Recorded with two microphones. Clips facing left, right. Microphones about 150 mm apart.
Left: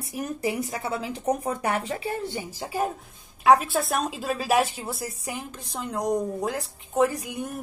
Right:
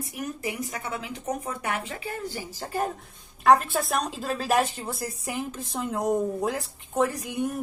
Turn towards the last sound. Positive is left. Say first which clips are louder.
# even
turn(degrees=0)  # may be behind; listen again after turning